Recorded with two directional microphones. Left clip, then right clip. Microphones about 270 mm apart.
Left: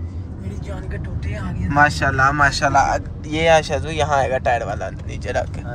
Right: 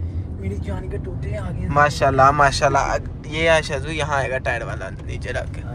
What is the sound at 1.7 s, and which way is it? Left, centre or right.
Speech, centre.